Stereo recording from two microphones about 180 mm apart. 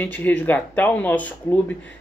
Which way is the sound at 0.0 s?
10° left (ahead or behind).